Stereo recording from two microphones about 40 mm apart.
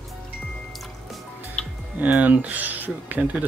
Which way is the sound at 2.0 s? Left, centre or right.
Right.